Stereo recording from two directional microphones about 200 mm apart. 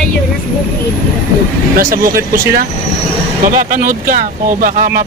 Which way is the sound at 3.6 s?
40° right (ahead or behind).